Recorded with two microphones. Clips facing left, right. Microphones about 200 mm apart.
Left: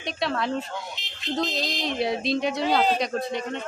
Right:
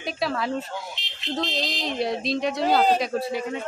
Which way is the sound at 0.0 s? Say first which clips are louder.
Even; centre (ahead or behind).